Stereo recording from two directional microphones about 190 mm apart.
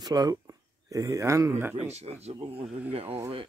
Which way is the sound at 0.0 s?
20° right (ahead or behind).